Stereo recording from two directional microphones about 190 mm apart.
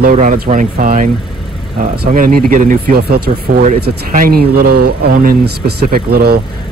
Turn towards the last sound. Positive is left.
turn(degrees=-55)  # may be behind; listen again after turning